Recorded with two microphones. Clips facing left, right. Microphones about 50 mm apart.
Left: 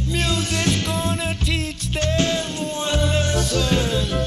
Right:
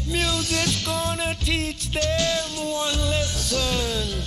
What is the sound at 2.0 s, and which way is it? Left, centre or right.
Music, left.